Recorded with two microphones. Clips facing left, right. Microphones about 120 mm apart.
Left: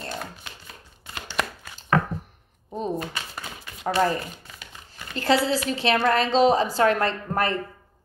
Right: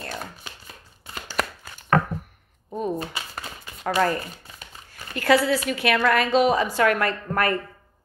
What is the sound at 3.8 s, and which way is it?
A woman's voice, 25° left (ahead or behind).